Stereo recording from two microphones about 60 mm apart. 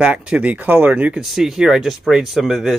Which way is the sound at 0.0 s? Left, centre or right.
Centre.